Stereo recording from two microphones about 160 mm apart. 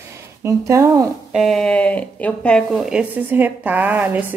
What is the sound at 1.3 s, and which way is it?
Speech, centre (ahead or behind).